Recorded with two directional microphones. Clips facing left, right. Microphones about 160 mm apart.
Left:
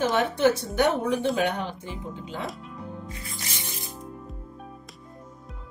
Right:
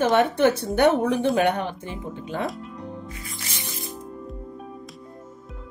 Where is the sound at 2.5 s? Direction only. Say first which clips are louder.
Right 3 dB; centre (ahead or behind).